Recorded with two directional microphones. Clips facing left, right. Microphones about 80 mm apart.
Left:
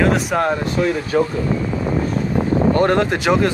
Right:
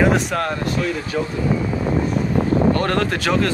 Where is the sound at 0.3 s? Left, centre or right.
Centre.